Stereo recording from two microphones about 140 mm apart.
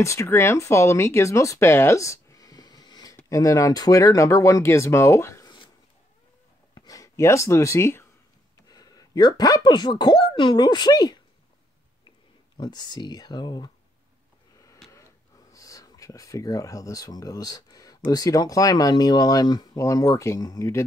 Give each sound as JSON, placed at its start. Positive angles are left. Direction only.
{"t": 0.0, "sound": "speech", "side_deg": 20}
{"t": 6.7, "sound": "a sound", "side_deg": 25}
{"t": 8.6, "sound": "speech", "side_deg": 30}
{"t": 12.5, "sound": "speech", "side_deg": 30}
{"t": 15.5, "sound": "speech", "side_deg": 25}